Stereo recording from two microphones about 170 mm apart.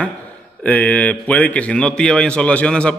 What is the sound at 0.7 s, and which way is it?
A man's voice, 10° left (ahead or behind).